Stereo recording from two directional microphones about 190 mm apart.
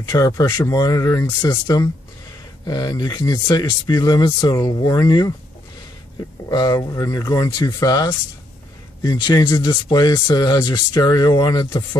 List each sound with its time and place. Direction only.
0.1 s speech: 20° left (ahead or behind)
6.5 s speech: 20° left (ahead or behind)